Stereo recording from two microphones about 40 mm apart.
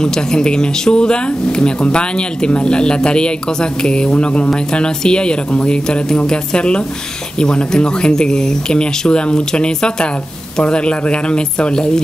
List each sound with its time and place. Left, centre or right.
0.0 s speech: centre